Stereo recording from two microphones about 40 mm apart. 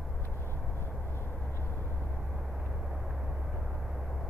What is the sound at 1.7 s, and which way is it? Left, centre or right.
Vehicle, left.